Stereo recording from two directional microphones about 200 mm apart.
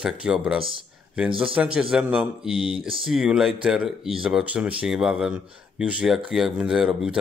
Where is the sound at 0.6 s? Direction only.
25° right (ahead or behind).